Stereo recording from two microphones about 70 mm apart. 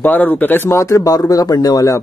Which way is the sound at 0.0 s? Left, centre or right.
Left.